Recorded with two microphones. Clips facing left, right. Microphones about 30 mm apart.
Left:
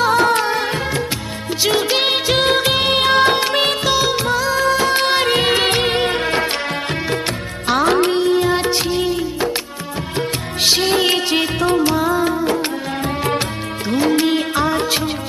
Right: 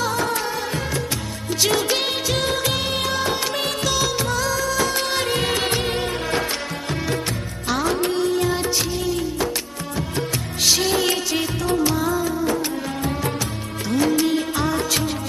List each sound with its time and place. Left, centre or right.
0.0 s music of bollywood: left
1.6 s music: left
2.0 s music of bollywood: left
3.3 s music: left
4.1 s music of bollywood: left
5.7 s music of bollywood: left
7.6 s music: left
10.1 s music: left
10.9 s music of bollywood: left
12.1 s music: left
13.8 s music: left